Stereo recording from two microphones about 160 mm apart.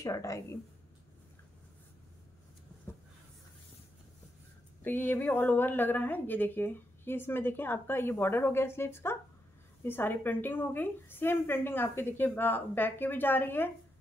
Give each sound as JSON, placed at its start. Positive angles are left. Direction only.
{"t": 0.0, "sound": "speech", "side_deg": 20}
{"t": 4.8, "sound": "a woman's voice", "side_deg": 10}